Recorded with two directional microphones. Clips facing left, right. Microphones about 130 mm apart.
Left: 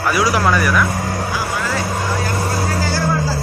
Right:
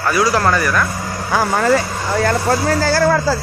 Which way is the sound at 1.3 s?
55° right (ahead or behind).